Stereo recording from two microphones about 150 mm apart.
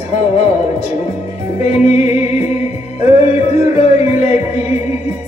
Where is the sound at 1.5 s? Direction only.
50° left (ahead or behind).